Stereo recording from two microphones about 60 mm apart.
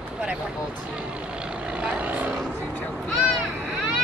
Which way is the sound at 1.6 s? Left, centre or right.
Centre.